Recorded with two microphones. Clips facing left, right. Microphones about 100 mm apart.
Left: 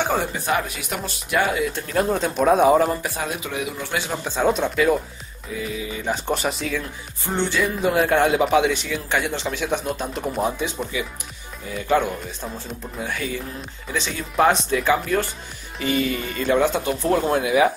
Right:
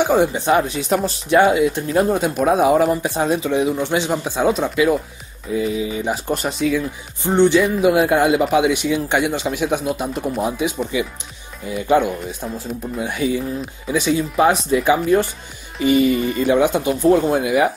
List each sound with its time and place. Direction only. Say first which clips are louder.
0.0 s speech: right 7 dB; 15° right (ahead or behind); by 1.5 s 35° right (ahead or behind)
1.5 s speech: right 7 dB; 20° right (ahead or behind); by 2.9 s 5° right (ahead or behind)
2.9 s speech: right 7 dB; 25° right (ahead or behind)
4.5 s speech: right 2 dB; centre (ahead or behind)
5.6 s speech: right 8 dB; 25° right (ahead or behind)
6.0 s speech: right 2 dB; 5° right (ahead or behind)
7.2 s speech: right 8 dB; 20° right (ahead or behind); by 10.5 s 5° right (ahead or behind)
11.7 s speech: right 4 dB; 15° right (ahead or behind)
15.8 s speech: right 8 dB; 15° right (ahead or behind)